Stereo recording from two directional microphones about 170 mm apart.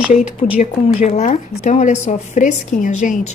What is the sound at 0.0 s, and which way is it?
Speech, 5° right (ahead or behind).